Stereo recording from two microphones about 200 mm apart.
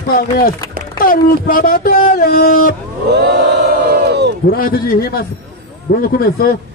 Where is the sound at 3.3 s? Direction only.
55° right (ahead or behind).